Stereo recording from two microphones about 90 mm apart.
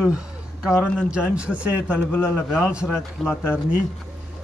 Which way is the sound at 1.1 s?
10° right (ahead or behind).